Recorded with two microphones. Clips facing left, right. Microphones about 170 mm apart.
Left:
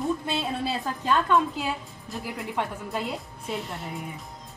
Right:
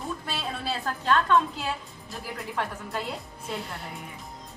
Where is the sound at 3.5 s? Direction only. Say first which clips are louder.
Left 2 dB; centre (ahead or behind).